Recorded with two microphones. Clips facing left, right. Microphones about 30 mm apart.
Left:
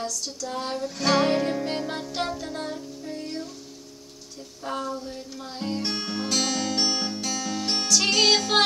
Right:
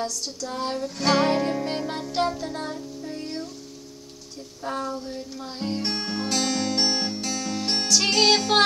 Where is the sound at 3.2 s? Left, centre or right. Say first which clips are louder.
Right 1 dB; right.